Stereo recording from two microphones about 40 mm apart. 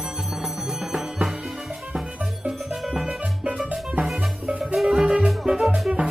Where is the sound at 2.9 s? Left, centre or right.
Centre.